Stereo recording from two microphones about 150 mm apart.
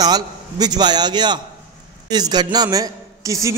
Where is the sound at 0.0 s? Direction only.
25° right (ahead or behind).